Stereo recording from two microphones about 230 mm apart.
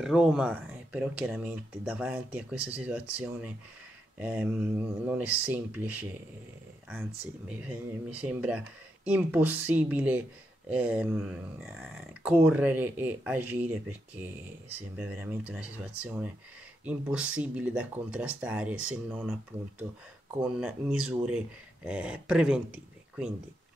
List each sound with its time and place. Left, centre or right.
0.0 s speech: centre
19.5 s speech: right
20.3 s speech: centre